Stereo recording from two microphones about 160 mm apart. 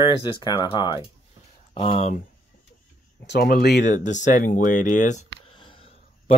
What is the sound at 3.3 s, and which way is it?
Speech, 75° left (ahead or behind).